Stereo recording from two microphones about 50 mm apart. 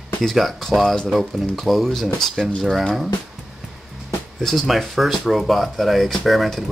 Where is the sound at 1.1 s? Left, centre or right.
Centre.